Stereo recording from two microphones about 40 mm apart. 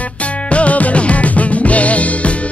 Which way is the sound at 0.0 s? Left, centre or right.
Left.